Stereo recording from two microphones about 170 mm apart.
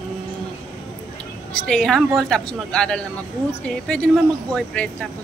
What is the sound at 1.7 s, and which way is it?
A woman's voice, centre (ahead or behind).